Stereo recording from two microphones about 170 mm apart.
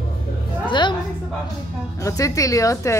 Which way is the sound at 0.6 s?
25° left (ahead or behind).